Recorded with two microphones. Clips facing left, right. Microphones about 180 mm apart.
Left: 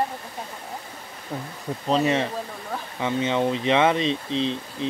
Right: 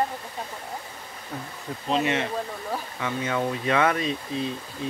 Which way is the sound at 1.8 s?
35° left (ahead or behind).